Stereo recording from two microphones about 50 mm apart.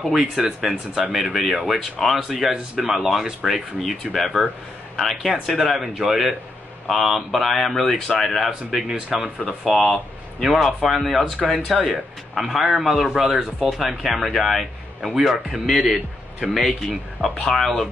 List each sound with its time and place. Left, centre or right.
0.6 s speech: centre
4.0 s speech: centre
9.4 s speech: centre
15.7 s speech: centre
16.3 s speech: centre